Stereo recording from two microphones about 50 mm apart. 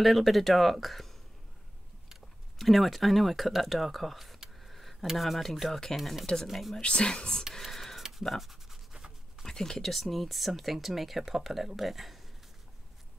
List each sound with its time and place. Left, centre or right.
0.0 s speech: centre
2.6 s speech: centre
4.6 s a sound: centre
5.1 s speech: centre
5.9 s speech: centre
6.8 s speech: centre
7.5 s a sound: centre
8.2 s writing: centre
9.4 s speech: centre